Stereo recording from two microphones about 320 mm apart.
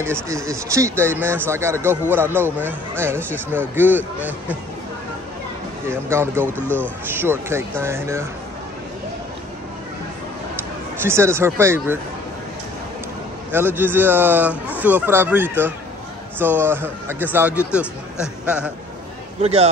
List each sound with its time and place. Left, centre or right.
0.0 s speech: centre
5.9 s speech: centre
11.0 s speech: centre
13.5 s a man's voice: centre
19.4 s a man's voice: centre